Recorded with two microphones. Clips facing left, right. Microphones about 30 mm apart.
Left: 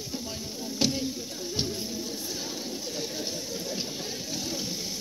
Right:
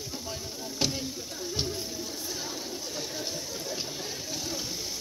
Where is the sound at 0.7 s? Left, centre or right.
Left.